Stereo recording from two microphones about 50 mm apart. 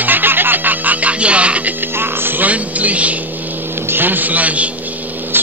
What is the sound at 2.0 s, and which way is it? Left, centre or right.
Speech, right.